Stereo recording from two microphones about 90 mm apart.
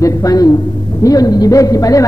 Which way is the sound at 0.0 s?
40° left (ahead or behind).